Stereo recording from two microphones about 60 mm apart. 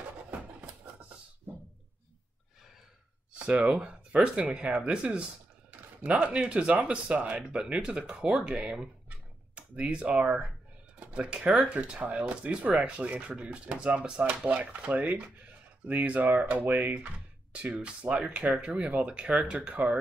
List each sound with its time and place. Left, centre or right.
3.3 s speech: right